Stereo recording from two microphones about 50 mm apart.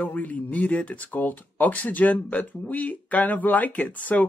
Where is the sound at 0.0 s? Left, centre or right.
Left.